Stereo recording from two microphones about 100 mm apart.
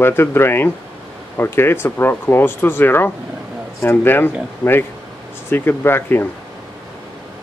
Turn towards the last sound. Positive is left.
turn(degrees=20)  # may be behind; listen again after turning